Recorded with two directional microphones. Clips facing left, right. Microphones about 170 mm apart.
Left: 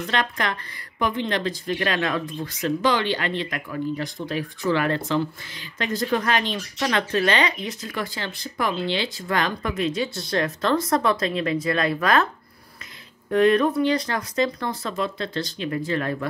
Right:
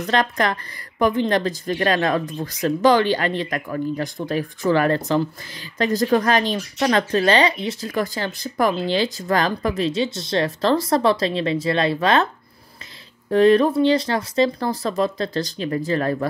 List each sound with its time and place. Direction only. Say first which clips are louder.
0.0 s speech: right 5 dB; 40° right (ahead or behind)
13.3 s speech: right 4 dB; 30° right (ahead or behind)